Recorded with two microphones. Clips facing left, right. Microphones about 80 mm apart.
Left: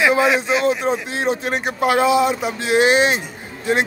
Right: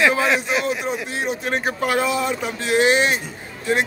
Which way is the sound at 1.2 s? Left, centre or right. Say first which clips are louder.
Left 5 dB; left.